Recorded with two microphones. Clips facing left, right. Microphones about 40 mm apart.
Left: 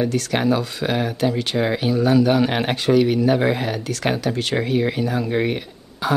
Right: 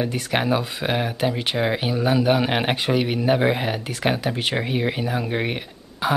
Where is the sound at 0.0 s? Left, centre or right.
Centre.